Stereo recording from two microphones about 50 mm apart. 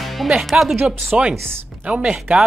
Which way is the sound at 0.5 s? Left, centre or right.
Centre.